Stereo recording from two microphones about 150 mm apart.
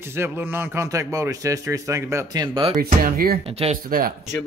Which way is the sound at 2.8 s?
85° right.